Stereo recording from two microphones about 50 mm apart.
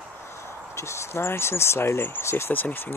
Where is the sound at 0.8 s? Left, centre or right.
Left.